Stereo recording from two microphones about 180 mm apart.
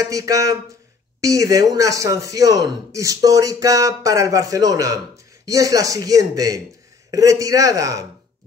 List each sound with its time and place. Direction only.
0.0 s speech: 20° right (ahead or behind)